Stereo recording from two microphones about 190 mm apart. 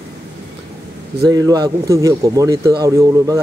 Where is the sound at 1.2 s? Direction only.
20° right (ahead or behind).